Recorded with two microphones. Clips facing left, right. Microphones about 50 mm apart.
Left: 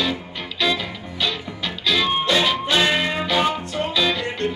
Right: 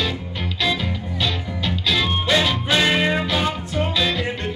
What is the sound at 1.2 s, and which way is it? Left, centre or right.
Music, centre.